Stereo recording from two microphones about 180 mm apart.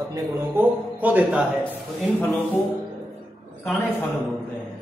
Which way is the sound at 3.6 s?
10° left (ahead or behind).